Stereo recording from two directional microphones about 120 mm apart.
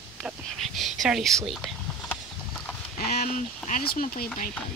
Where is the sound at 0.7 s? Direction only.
Centre (ahead or behind).